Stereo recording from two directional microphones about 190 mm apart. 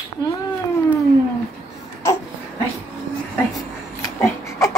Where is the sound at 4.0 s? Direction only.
15° left (ahead or behind).